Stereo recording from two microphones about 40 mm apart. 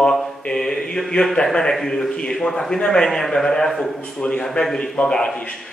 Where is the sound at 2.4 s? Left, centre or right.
Left.